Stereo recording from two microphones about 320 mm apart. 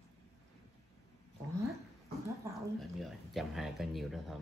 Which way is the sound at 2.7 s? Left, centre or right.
Centre.